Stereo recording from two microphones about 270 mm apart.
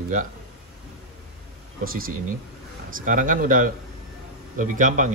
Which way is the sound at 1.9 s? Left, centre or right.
Right.